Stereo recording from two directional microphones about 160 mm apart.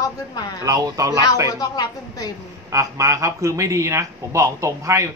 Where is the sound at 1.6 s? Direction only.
25° left (ahead or behind).